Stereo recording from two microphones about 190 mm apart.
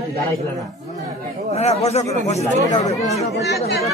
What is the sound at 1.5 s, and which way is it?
Speech, 35° left (ahead or behind).